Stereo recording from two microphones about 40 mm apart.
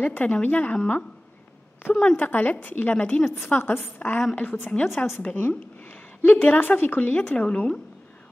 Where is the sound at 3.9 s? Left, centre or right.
Left.